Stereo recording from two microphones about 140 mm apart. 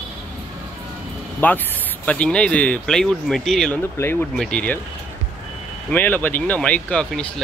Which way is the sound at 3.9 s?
15° left (ahead or behind).